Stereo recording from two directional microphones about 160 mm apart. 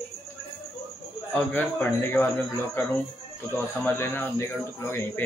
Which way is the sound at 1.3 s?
10° left (ahead or behind).